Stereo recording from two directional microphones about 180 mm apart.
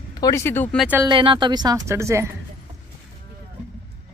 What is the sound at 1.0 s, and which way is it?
Speech, 30° right (ahead or behind).